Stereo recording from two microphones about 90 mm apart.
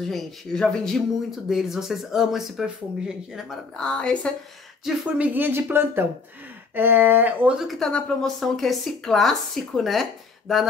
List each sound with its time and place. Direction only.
0.0 s speech: 5° left (ahead or behind)
3.7 s a woman's voice: 10° left (ahead or behind)
5.1 s speech: 15° right (ahead or behind)
7.8 s speech: 5° left (ahead or behind)